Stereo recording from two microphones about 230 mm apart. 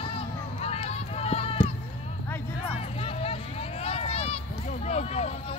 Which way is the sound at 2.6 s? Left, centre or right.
Left.